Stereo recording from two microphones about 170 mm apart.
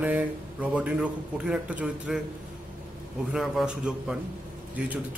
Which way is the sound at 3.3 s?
5° right (ahead or behind).